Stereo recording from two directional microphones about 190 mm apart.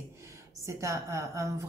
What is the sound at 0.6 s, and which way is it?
Speech, 15° right (ahead or behind).